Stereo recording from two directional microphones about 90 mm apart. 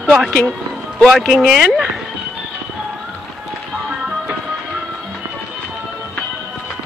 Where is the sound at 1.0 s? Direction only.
Centre (ahead or behind).